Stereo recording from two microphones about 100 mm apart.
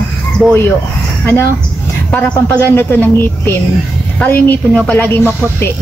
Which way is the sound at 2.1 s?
15° left (ahead or behind).